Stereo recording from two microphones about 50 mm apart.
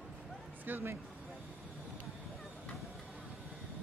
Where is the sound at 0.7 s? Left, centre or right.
Right.